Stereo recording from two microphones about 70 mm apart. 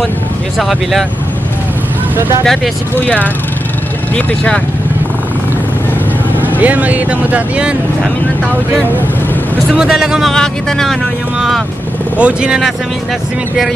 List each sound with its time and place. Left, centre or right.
0.6 s speech: centre
2.4 s speech: centre
6.6 s speech: right
9.8 s speech: centre
10.3 s speech: centre
12.2 s speech: centre